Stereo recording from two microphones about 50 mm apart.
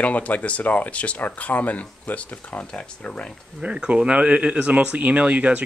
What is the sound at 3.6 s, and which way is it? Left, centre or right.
Speech, right.